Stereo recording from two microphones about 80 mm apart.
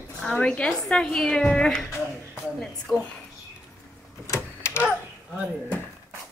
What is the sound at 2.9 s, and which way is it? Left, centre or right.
Speech, centre.